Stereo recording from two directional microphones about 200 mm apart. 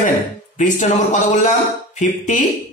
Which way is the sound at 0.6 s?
35° left (ahead or behind).